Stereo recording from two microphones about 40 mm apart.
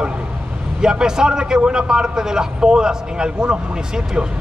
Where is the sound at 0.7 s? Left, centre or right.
Centre.